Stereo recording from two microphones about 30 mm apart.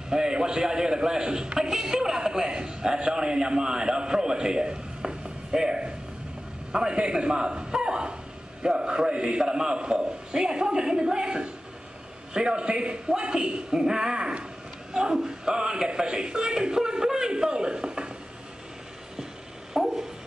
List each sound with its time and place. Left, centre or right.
0.1 s a man's voice: right
1.6 s a man's voice: centre
19.7 s dog: centre